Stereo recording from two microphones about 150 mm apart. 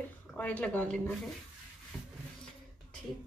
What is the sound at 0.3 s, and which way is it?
Speech, 10° left (ahead or behind).